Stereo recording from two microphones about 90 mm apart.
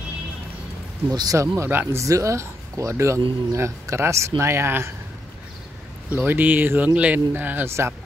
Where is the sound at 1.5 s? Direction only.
25° right (ahead or behind).